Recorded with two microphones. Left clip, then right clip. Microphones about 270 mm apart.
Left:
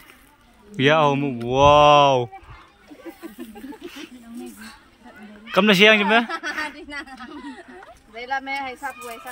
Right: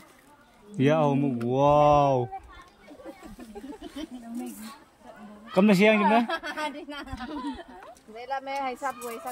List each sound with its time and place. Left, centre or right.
0.7 s speech: centre
5.5 s speech: centre
6.2 s a sound: right
8.4 s speech: right